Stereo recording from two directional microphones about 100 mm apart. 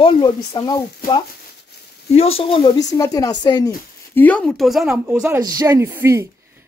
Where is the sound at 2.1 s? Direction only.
75° left (ahead or behind).